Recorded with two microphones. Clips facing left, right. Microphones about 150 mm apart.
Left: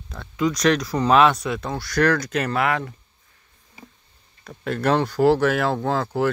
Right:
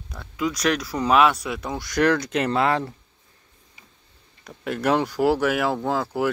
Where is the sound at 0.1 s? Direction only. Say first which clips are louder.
Left 3 dB; 5° right (ahead or behind); by 2.9 s 30° right (ahead or behind).